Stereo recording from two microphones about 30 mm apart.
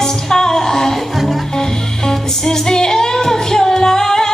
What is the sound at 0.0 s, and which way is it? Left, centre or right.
Music, centre.